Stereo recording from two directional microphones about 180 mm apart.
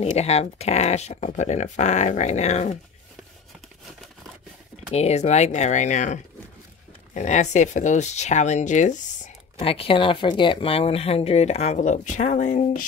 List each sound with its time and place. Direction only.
0.0 s speech: 35° left (ahead or behind)
4.9 s speech: 35° left (ahead or behind)
7.2 s speech: 40° left (ahead or behind)
9.6 s speech: 30° left (ahead or behind)